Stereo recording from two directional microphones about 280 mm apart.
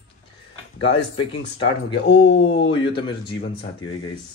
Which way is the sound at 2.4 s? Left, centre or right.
Centre.